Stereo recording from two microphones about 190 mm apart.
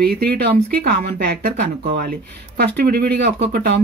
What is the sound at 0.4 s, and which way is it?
Speech, 55° right (ahead or behind).